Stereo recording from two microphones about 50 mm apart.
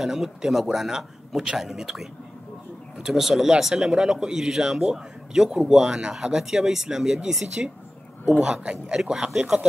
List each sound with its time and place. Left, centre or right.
0.0 s speech: centre